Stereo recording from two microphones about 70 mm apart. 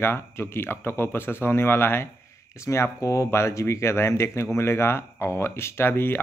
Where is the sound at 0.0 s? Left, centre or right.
Left.